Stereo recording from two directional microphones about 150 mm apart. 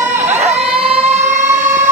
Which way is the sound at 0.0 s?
50° right (ahead or behind).